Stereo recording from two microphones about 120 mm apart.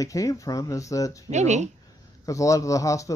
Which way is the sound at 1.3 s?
70° right (ahead or behind).